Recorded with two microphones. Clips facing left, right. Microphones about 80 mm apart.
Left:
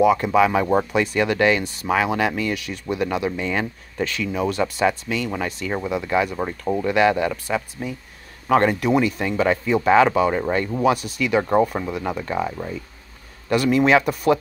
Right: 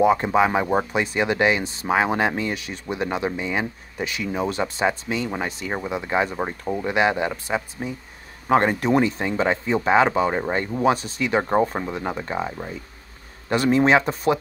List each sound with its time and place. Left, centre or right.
0.0 s speech: right
3.4 s speech: centre
4.2 s speech: right